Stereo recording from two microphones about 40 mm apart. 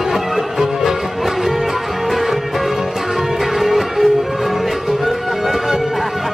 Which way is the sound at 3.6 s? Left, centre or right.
Centre.